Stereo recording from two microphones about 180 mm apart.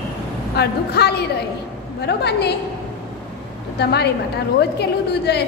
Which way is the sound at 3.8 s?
65° left (ahead or behind).